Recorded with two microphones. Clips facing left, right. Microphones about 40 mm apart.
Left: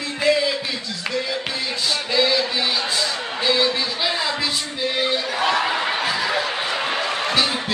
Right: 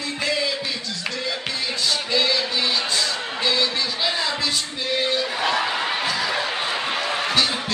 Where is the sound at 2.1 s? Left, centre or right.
Centre.